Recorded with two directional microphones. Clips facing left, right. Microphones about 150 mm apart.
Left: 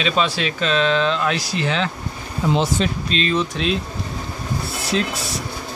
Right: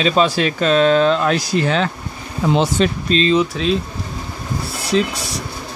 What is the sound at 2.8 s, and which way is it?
Speech, 65° right (ahead or behind).